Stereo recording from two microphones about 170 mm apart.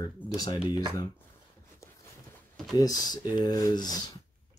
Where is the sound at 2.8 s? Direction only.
20° left (ahead or behind).